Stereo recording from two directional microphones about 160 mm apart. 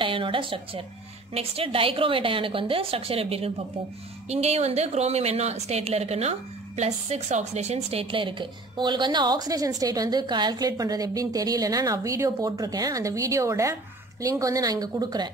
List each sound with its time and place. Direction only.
0.0 s a woman's voice: 35° right (ahead or behind)